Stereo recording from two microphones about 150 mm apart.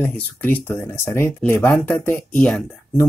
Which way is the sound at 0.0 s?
10° left (ahead or behind).